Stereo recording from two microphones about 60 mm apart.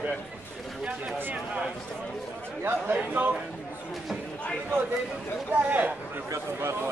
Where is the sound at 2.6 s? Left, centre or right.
Right.